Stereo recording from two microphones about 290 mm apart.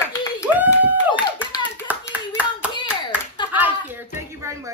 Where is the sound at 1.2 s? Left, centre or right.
Centre.